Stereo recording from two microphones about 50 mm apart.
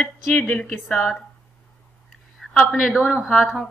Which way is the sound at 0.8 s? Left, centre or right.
Centre.